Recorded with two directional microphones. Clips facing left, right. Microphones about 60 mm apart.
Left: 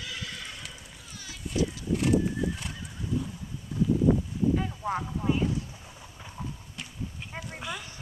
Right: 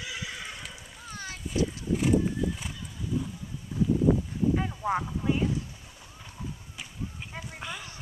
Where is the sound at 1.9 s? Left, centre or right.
Centre.